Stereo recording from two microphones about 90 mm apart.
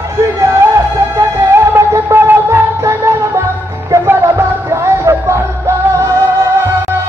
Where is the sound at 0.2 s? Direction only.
35° right (ahead or behind).